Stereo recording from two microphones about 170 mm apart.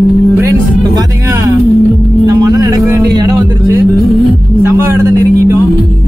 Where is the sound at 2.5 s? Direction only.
20° right (ahead or behind).